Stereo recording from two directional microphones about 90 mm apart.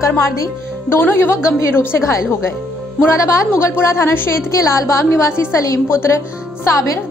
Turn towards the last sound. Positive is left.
turn(degrees=35)  # may be behind; listen again after turning